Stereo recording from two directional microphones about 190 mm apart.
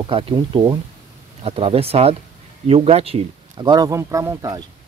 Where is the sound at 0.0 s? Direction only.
30° right (ahead or behind).